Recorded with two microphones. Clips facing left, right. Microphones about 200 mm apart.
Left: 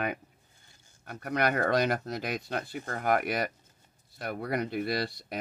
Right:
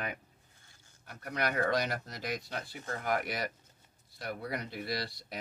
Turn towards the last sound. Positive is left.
turn(degrees=55)  # may be behind; listen again after turning